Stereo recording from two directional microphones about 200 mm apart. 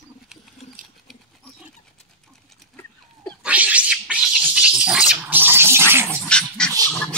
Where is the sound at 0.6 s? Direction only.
35° left (ahead or behind).